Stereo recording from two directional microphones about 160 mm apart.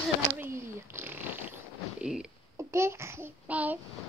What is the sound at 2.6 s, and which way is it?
Child singing, 15° right (ahead or behind).